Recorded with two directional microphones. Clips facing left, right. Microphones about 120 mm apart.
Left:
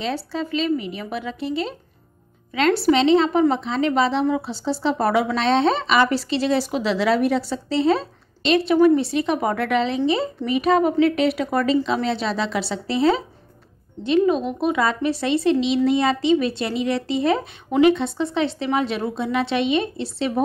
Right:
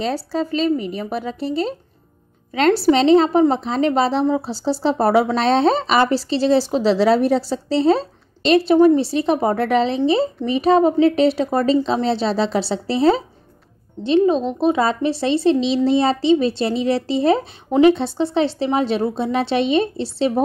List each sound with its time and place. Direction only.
0.0 s speech: 40° right (ahead or behind)